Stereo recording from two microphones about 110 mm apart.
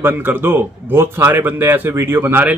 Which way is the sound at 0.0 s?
20° right (ahead or behind).